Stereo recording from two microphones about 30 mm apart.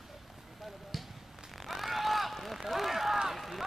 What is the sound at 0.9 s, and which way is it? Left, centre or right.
Basketball bounce, centre.